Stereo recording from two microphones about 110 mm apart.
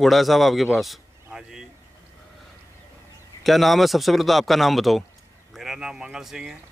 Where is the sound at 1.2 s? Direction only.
5° right (ahead or behind).